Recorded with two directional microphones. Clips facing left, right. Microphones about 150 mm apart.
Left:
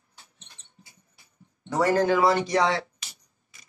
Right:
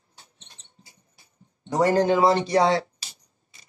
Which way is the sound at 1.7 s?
20° right (ahead or behind).